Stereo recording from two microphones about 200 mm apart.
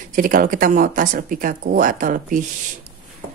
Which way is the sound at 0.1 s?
45° right (ahead or behind).